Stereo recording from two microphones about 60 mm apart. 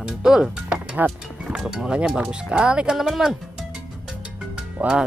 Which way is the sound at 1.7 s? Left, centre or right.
Centre.